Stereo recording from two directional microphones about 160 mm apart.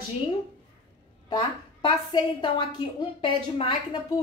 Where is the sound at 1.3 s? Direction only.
30° left (ahead or behind).